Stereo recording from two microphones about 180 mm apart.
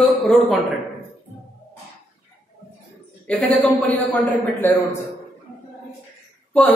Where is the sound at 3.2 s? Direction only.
5° left (ahead or behind).